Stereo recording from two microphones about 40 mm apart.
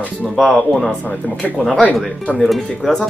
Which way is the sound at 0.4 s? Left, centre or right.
Centre.